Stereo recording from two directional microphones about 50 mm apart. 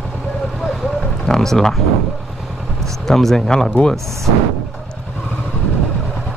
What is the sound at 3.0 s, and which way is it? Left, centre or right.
Speech, centre.